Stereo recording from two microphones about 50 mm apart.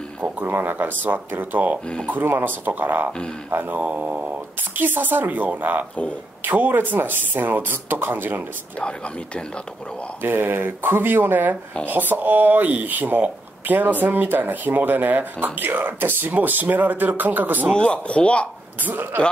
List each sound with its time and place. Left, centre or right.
0.5 s speech: right
4.8 s speech: right
10.2 s speech: right
17.7 s speech: left
18.8 s speech: right